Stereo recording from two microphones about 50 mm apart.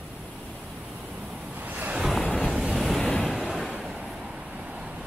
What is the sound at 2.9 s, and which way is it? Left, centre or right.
Waves, centre.